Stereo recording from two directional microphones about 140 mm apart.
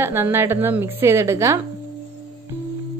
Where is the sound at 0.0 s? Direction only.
15° right (ahead or behind).